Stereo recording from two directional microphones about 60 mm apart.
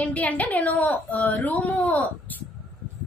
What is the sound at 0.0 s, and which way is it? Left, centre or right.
A woman's voice, left.